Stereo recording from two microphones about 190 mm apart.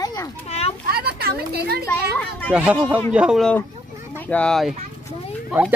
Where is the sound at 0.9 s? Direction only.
55° right (ahead or behind).